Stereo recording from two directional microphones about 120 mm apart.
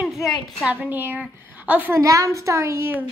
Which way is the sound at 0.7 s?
15° right (ahead or behind).